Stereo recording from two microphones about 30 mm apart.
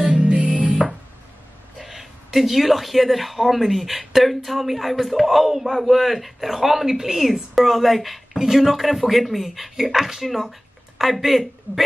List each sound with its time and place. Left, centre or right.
0.1 s music: right
1.8 s a woman's voice: centre